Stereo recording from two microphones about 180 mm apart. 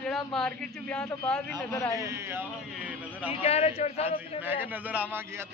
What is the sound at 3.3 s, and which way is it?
A man's voice, 35° left (ahead or behind).